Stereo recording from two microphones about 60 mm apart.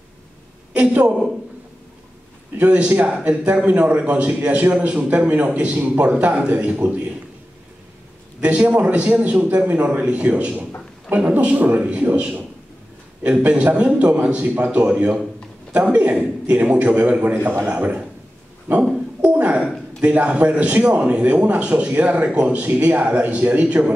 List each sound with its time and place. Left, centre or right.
0.7 s a man's voice: centre
2.5 s a man's voice: right
8.4 s a man's voice: right
18.7 s dog: right
19.2 s a sound: right
20.0 s a man's voice: right